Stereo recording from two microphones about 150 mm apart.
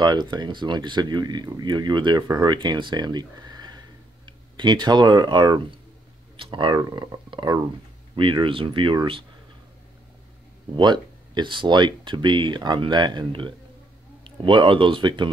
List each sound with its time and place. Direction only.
0.0 s speech: 30° right (ahead or behind)
10.7 s speech: 30° right (ahead or behind)